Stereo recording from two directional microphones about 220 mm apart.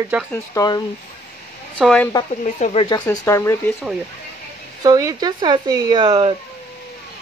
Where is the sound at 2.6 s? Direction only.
30° left (ahead or behind).